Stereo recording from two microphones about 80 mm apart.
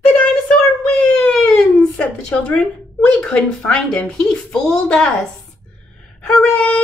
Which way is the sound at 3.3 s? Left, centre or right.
Centre.